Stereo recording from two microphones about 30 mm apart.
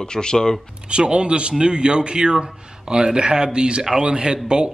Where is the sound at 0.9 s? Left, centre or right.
Right.